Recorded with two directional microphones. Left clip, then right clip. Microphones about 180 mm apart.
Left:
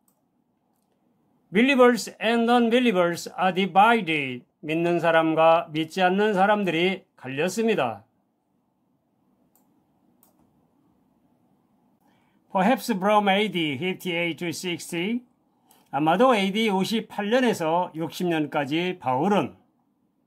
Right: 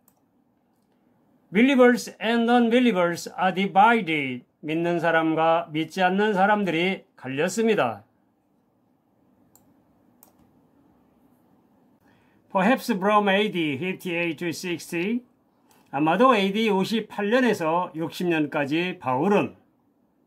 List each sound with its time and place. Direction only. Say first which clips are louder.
1.5 s speech: even; 20° left (ahead or behind)
12.4 s speech: even; 10° left (ahead or behind)